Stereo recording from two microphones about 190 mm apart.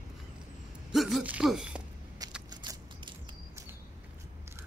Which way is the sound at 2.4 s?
25° right (ahead or behind).